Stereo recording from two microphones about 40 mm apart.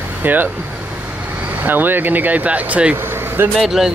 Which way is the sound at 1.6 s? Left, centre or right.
Right.